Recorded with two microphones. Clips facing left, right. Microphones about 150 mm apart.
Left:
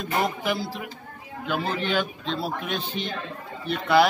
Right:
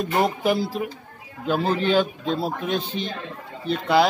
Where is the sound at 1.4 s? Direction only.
35° right (ahead or behind).